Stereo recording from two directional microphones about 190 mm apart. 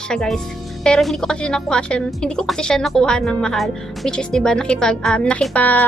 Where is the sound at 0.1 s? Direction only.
5° left (ahead or behind).